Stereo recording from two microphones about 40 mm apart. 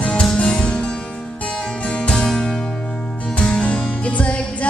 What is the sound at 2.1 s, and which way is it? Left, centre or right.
Music, centre.